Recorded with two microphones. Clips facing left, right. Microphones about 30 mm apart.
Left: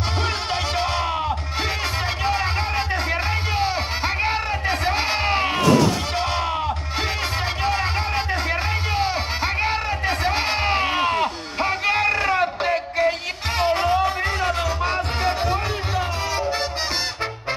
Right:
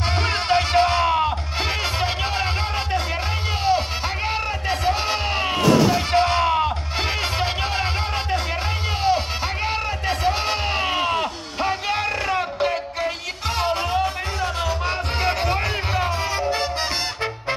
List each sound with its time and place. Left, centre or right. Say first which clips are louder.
0.8 s music: right 4 dB; centre
3.6 s music: right 2 dB; centre
6.1 s a sound: right 5 dB; centre
7.3 s music: even; centre
9.0 s music: right 2 dB; centre
16.3 s salsa music: left 1 dB; centre